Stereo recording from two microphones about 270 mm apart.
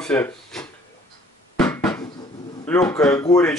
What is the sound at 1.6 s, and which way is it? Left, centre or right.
Bouncing, centre.